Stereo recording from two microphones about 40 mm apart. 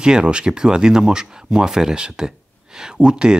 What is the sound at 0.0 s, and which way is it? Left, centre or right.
Speech, right.